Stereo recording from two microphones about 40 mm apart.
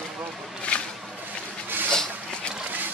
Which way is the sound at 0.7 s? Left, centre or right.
Left.